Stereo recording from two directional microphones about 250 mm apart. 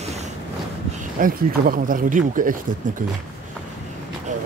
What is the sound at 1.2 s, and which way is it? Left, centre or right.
Speech, right.